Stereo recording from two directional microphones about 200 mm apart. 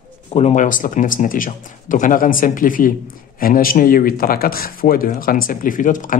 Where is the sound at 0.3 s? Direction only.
30° left (ahead or behind).